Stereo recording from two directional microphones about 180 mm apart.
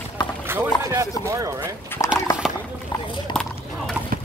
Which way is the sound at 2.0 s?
15° left (ahead or behind).